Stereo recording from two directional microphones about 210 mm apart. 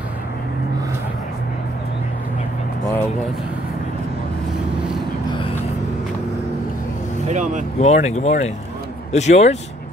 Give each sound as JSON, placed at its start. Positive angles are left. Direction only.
{"t": 7.2, "sound": "speech", "side_deg": -35}
{"t": 7.8, "sound": "speech", "side_deg": 35}